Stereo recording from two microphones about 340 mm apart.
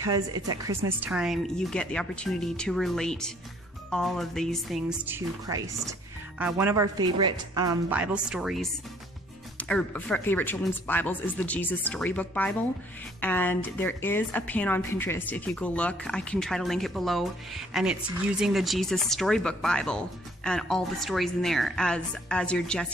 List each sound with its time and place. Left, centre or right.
0.0 s a woman's voice: centre